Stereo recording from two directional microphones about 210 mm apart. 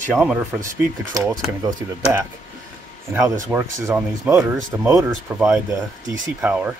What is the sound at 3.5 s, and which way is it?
Speech, 10° right (ahead or behind).